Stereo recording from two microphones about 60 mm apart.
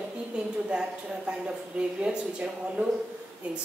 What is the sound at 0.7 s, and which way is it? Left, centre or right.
A woman's voice, centre.